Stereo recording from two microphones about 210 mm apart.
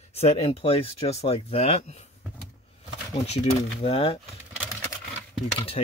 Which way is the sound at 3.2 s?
30° left (ahead or behind).